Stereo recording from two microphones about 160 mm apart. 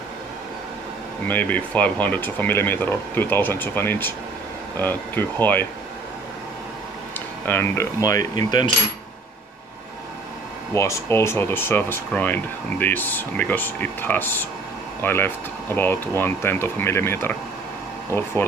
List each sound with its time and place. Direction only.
1.2 s speech: 10° left (ahead or behind)
7.2 s speech: 15° left (ahead or behind)
10.7 s speech: 20° left (ahead or behind)